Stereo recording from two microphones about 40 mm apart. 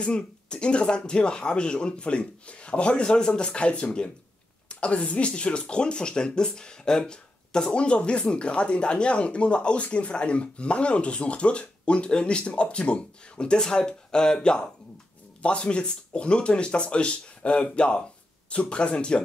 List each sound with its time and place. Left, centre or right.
0.0 s speech: left